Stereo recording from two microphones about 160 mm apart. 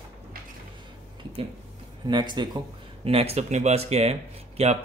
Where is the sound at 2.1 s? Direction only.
30° right (ahead or behind).